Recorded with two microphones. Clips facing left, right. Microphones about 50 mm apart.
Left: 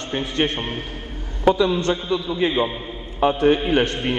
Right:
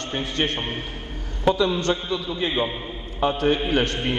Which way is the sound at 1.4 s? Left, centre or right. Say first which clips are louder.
Left 3 dB; centre.